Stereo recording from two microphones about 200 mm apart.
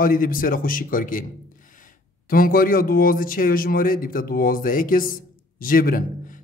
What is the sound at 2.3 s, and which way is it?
A man's voice, 45° left (ahead or behind).